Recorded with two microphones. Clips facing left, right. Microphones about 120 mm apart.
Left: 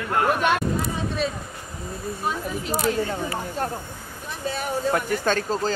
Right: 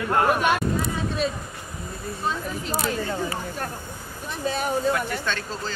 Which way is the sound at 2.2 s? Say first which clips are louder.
Even; 15° left (ahead or behind).